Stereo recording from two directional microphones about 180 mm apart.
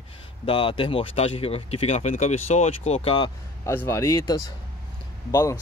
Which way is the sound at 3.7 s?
15° left (ahead or behind).